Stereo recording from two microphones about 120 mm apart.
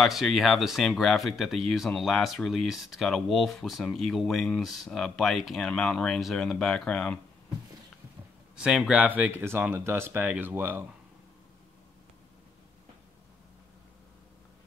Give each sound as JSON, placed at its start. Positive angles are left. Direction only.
{"t": 0.0, "sound": "speech", "side_deg": 0}
{"t": 8.5, "sound": "speech", "side_deg": -5}